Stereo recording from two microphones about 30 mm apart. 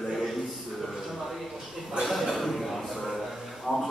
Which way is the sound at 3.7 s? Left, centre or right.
Centre.